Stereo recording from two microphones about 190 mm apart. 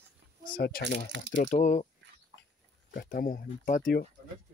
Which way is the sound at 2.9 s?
45° left (ahead or behind).